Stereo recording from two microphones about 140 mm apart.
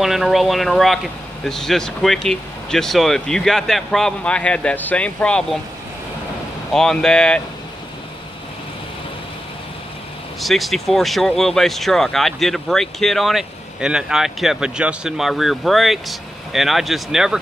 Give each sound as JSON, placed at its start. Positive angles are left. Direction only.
{"t": 0.0, "sound": "speech", "side_deg": 0}
{"t": 6.7, "sound": "speech", "side_deg": 5}
{"t": 10.4, "sound": "speech", "side_deg": 0}